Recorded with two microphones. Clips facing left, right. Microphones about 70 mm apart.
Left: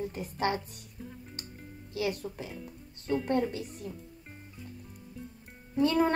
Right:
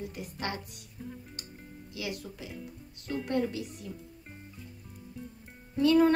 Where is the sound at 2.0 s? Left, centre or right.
Left.